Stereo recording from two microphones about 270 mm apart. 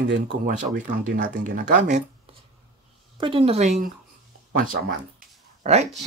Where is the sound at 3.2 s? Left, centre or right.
Right.